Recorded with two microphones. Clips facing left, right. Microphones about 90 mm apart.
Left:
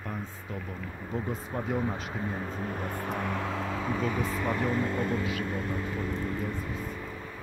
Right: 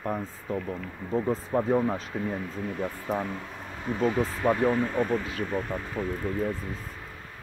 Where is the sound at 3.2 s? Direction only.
85° left.